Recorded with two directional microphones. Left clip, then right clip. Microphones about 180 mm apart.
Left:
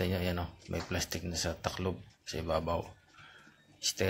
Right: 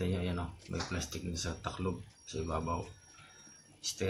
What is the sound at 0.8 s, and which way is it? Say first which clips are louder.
Speech: left 3 dB; 35° left (ahead or behind).